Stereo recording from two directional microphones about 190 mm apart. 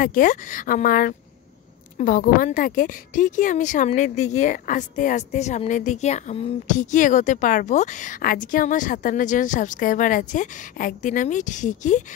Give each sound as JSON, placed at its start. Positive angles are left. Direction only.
{"t": 0.0, "sound": "a woman's voice", "side_deg": 45}